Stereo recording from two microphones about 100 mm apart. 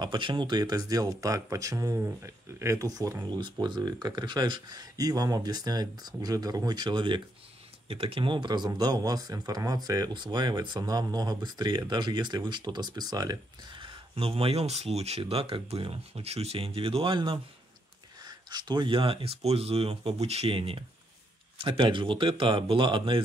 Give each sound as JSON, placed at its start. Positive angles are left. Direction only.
{"t": 0.0, "sound": "speech", "side_deg": -50}
{"t": 3.3, "sound": "speech", "side_deg": -50}
{"t": 7.9, "sound": "speech", "side_deg": -65}
{"t": 13.7, "sound": "speech", "side_deg": -65}
{"t": 18.2, "sound": "speech", "side_deg": -45}